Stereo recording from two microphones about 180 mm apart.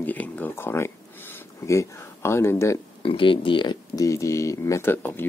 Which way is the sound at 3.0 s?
30° left (ahead or behind).